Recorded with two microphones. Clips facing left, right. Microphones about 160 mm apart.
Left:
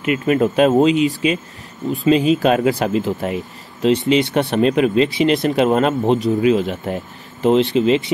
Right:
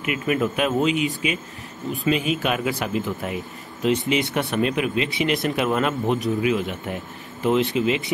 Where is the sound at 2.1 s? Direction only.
30° left (ahead or behind).